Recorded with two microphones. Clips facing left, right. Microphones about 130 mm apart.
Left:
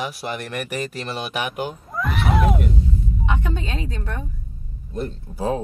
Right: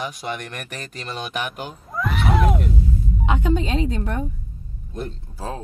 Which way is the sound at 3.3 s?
25° right (ahead or behind).